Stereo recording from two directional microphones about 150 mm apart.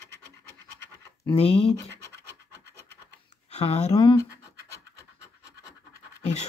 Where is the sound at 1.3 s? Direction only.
40° left (ahead or behind).